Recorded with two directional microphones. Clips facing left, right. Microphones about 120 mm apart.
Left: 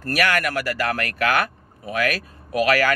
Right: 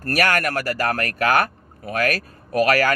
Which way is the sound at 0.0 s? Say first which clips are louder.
Right 1 dB; 45° right (ahead or behind).